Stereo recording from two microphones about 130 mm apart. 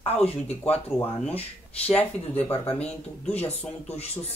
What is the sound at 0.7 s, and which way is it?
Speech, 10° left (ahead or behind).